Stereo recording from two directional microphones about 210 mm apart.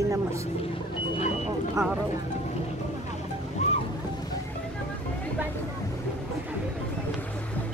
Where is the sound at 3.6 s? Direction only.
35° left (ahead or behind).